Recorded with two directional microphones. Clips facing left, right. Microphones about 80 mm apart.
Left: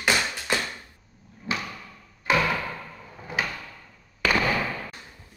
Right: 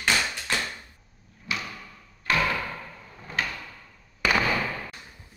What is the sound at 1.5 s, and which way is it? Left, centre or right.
Drawer open or close, left.